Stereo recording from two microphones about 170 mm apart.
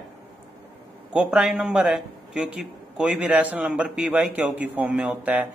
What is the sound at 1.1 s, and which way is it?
A man's voice, 5° right (ahead or behind).